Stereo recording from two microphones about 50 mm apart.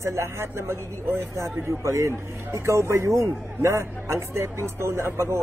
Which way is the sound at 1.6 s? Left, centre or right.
Right.